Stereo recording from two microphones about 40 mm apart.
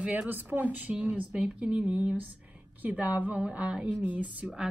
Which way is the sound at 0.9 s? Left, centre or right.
Right.